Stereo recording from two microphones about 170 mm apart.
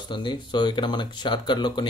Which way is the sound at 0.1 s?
25° left (ahead or behind).